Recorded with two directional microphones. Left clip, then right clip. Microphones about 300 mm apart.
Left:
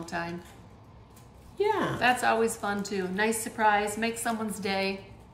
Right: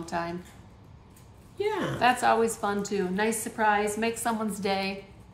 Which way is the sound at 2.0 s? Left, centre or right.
Centre.